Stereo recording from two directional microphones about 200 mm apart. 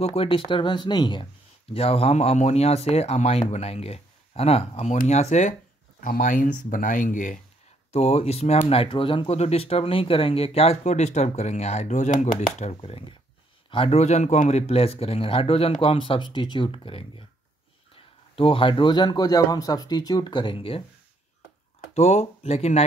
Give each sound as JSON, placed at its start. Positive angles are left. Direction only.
{"t": 0.0, "sound": "speech", "side_deg": 30}
{"t": 7.9, "sound": "speech", "side_deg": 30}
{"t": 21.9, "sound": "speech", "side_deg": 35}